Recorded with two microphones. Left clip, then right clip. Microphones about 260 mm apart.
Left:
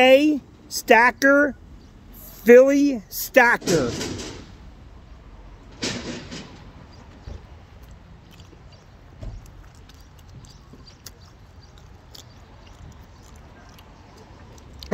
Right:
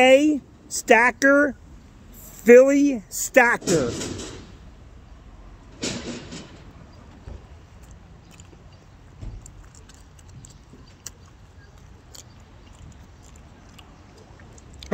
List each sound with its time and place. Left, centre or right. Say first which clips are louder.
0.0 s speech: left 1 dB; centre
3.6 s speech: left 1 dB; left
5.8 s a sound: left 1 dB; left